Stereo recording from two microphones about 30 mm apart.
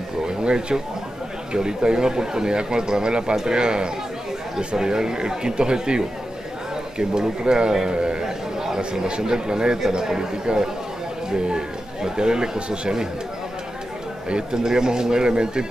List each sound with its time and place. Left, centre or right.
0.4 s speech: right
8.2 s a sound: centre
9.2 s speech: right
12.0 s speech: right
14.3 s speech: right